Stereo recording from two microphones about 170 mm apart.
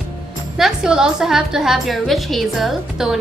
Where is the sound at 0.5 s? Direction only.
5° right (ahead or behind).